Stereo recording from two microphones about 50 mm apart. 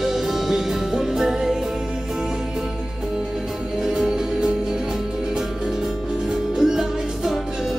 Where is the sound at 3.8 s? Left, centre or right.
Centre.